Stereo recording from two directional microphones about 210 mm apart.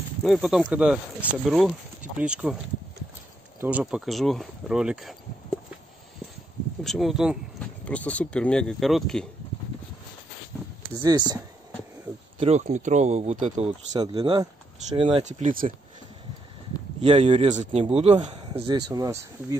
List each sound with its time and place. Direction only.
0.2 s speech: centre (ahead or behind)
3.6 s speech: 5° right (ahead or behind)
6.8 s speech: centre (ahead or behind)
11.0 s speech: 20° right (ahead or behind)
12.4 s speech: 30° right (ahead or behind)
17.0 s speech: 30° right (ahead or behind)